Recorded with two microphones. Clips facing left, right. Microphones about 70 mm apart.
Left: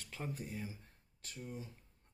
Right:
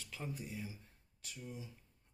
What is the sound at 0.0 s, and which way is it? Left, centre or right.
Speech, left.